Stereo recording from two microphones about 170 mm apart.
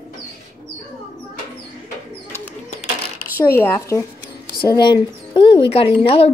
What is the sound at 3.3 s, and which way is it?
Speech, 15° left (ahead or behind).